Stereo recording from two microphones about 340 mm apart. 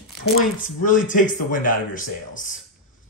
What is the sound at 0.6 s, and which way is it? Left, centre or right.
Speech, left.